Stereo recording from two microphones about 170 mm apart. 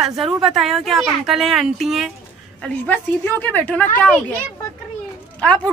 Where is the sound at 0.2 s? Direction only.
Centre (ahead or behind).